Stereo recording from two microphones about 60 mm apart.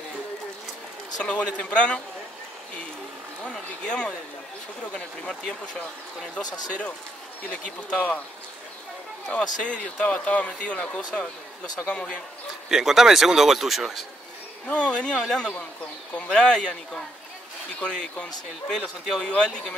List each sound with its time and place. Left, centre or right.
1.2 s speech: centre
3.4 s speech: centre
9.3 s speech: centre
12.6 s speech: centre
14.7 s speech: centre